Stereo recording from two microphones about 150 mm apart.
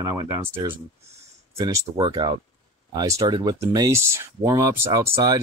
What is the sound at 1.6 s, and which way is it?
Speech, 25° right (ahead or behind).